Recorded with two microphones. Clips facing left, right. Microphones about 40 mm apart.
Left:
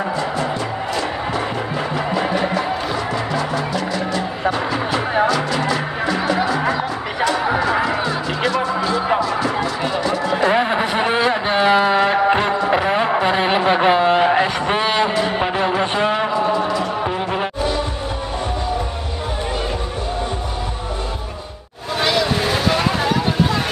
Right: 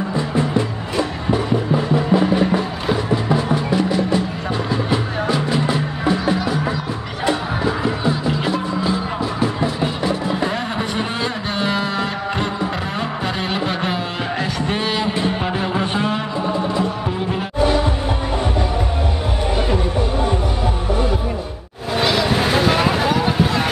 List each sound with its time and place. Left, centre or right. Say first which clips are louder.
5.7 s music: even; right
10.5 s a sound: left 6 dB; left
15.4 s music: left 3 dB; centre
21.9 s vehicle: right 1 dB; centre